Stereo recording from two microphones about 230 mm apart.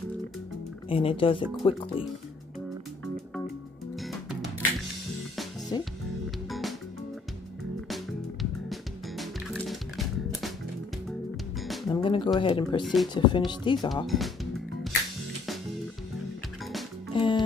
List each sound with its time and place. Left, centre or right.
0.8 s speech: left
4.0 s music: centre
5.7 s music: centre
7.9 s music: centre
11.9 s music: left
12.4 s speech: left
12.8 s speech: centre
13.1 s speech: centre
14.0 s music: centre
17.1 s music: left